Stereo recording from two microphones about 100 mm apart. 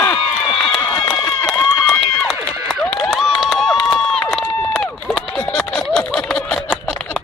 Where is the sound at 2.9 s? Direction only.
Centre (ahead or behind).